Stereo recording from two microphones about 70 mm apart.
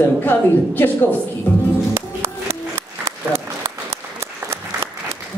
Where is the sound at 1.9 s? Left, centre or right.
Right.